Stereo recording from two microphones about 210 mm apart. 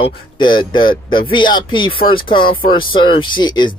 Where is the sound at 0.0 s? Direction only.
20° left (ahead or behind).